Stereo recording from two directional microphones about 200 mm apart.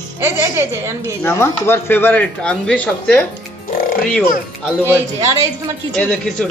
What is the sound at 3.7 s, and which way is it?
Music, 45° left (ahead or behind).